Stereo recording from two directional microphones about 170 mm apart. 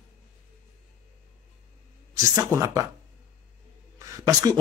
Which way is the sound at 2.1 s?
20° right (ahead or behind).